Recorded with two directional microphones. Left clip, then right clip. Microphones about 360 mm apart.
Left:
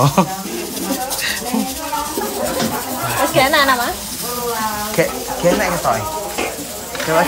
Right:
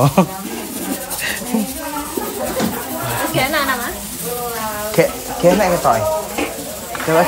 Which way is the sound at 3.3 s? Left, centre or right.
Left.